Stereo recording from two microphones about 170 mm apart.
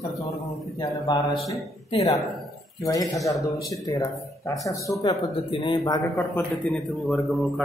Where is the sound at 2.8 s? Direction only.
20° left (ahead or behind).